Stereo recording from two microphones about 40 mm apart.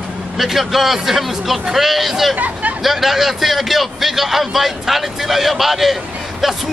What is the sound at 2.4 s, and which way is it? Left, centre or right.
Speech, right.